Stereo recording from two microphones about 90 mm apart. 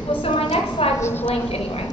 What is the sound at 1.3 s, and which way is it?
Speech, 90° left.